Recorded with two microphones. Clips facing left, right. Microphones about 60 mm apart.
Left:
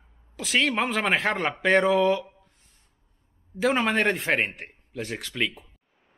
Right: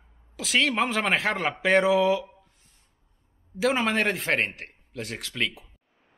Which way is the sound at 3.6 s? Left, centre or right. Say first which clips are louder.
Left 1 dB; centre.